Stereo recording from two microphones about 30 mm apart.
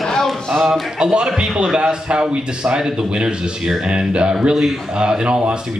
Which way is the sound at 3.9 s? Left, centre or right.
Right.